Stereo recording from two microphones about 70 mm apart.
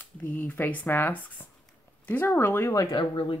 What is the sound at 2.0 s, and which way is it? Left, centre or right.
Speech, left.